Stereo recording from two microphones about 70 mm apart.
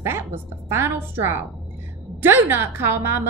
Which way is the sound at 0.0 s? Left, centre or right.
Right.